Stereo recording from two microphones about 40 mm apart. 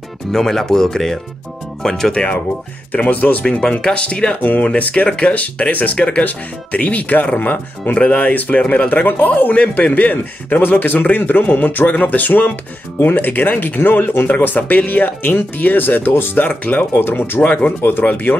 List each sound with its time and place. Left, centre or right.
0.3 s speech: centre
2.9 s speech: left
3.4 s speech: centre
3.8 s speech: left
4.4 s speech: left
4.6 s speech: left
7.9 s speech: left
16.1 s speech: left
16.4 s speech: left
17.0 s speech: left
17.4 s speech: left
18.0 s speech: left